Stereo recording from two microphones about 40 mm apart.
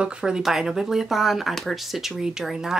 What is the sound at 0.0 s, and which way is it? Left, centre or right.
Speech, centre.